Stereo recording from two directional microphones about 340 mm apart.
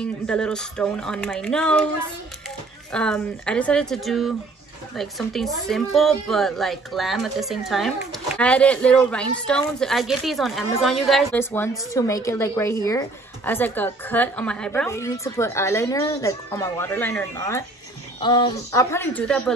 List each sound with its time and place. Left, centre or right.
0.0 s a woman's voice: centre
2.9 s a woman's voice: centre